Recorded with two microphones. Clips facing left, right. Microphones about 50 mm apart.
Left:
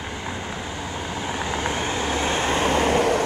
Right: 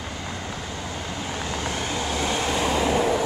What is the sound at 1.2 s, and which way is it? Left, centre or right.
Vehicle, left.